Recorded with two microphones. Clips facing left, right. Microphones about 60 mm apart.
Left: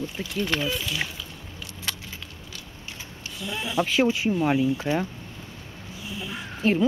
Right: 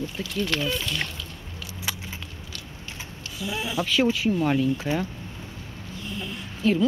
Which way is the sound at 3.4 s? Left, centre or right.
Centre.